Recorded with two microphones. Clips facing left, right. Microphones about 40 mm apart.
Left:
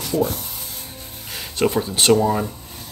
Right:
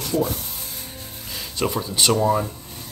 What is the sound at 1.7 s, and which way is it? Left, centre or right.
Speech, left.